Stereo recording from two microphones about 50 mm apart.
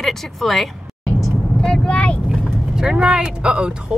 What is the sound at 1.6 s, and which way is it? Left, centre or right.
Vehicle, centre.